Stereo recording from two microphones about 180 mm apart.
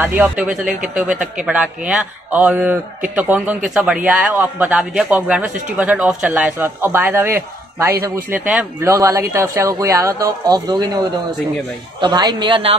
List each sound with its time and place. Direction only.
0.0 s speech: 10° right (ahead or behind)
8.9 s speech: 15° right (ahead or behind)
12.0 s a man's voice: 25° right (ahead or behind)